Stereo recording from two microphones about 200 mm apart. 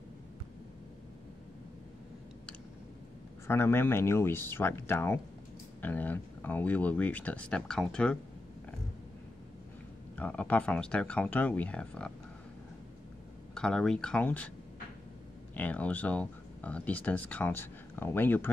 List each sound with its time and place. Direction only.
3.4 s speech: 10° left (ahead or behind)
10.1 s speech: 5° left (ahead or behind)
13.6 s speech: 5° left (ahead or behind)
15.5 s speech: 10° left (ahead or behind)